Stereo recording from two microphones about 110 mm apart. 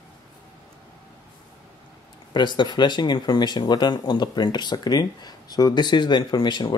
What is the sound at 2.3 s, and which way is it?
Speech, 45° left (ahead or behind).